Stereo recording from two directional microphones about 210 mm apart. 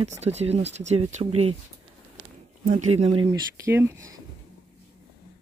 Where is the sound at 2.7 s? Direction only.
35° right (ahead or behind).